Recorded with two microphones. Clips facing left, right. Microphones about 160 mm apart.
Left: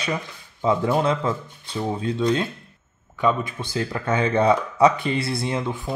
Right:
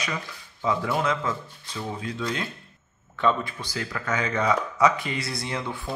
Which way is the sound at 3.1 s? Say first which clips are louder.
Left 2 dB; 10° left (ahead or behind).